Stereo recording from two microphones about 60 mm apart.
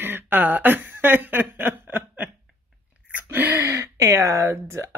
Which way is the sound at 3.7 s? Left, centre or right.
Right.